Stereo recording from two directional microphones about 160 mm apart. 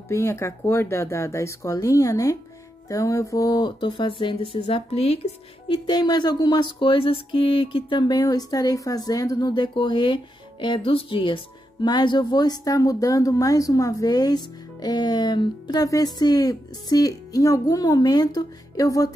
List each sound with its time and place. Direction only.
0.1 s speech: 15° left (ahead or behind)